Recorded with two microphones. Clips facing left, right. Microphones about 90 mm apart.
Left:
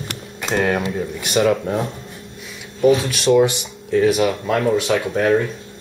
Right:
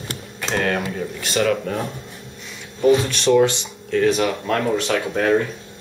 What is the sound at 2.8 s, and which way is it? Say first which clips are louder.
Speech: left 1 dB; 10° left (ahead or behind).